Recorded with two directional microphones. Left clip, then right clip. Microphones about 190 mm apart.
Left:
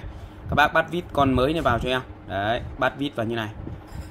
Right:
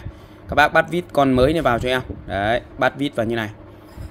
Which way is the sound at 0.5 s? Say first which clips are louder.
Right 4 dB; 40° right (ahead or behind).